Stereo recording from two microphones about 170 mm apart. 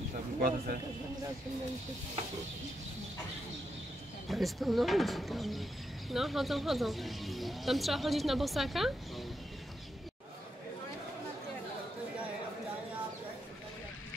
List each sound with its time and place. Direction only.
0.4 s speech: 60° right (ahead or behind)
4.3 s speech: centre (ahead or behind)